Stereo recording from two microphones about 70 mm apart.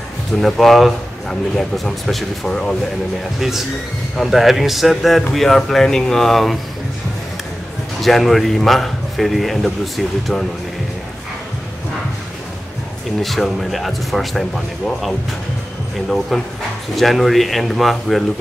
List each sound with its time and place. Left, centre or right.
0.4 s a man's voice: centre
3.3 s a man's voice: centre
8.0 s a man's voice: centre
13.2 s a man's voice: centre
16.9 s a man's voice: centre